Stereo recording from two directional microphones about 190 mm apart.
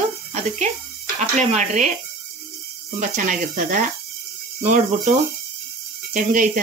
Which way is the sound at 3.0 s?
45° right (ahead or behind).